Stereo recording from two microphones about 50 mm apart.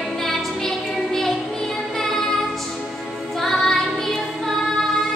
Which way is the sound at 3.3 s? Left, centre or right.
Centre.